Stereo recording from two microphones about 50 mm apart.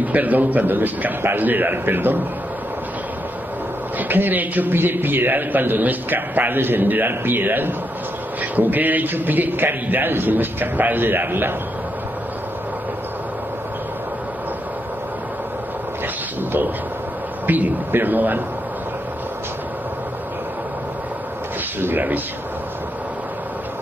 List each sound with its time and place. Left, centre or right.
0.0 s a man's voice: right
4.1 s a man's voice: right
17.5 s a man's voice: right
21.7 s speech: right